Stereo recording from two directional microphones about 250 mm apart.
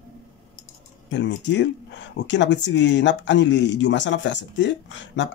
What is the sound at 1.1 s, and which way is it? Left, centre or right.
Speech, left.